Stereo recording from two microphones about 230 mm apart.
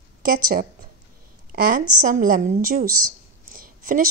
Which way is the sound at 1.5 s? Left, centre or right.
Right.